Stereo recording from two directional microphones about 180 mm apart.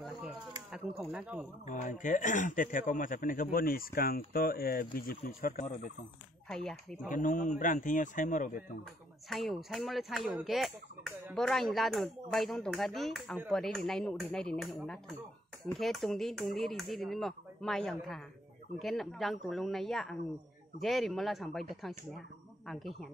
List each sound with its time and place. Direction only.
1.1 s speech: 5° right (ahead or behind)
1.7 s speech: 45° left (ahead or behind)
6.5 s speech: 5° left (ahead or behind)
7.1 s speech: 50° left (ahead or behind)
9.3 s speech: centre (ahead or behind)